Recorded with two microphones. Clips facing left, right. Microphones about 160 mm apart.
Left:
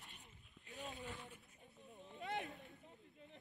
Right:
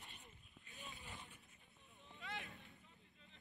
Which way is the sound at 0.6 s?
80° left.